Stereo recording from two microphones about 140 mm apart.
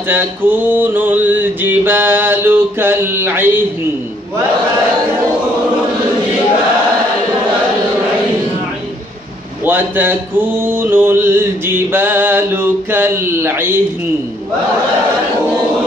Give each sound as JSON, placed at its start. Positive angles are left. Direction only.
{"t": 0.1, "sound": "mantra", "side_deg": -15}
{"t": 9.7, "sound": "mantra", "side_deg": -15}